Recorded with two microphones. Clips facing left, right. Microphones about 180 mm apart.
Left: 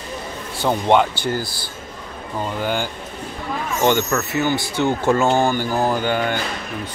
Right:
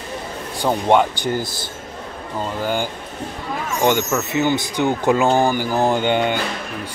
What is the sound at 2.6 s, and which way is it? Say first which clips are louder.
Speech: right 2 dB; 5° right (ahead or behind).